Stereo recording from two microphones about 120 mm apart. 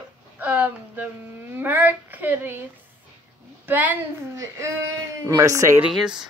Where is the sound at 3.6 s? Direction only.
15° right (ahead or behind).